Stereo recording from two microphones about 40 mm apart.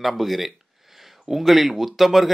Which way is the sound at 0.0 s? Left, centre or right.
Centre.